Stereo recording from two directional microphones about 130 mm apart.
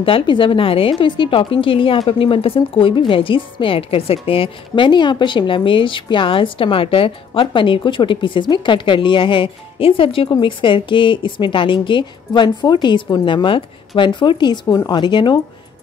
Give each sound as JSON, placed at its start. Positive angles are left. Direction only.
{"t": 0.0, "sound": "a woman's voice", "side_deg": 40}